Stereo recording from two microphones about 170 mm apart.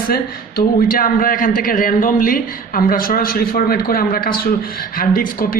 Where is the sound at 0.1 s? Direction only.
60° left (ahead or behind).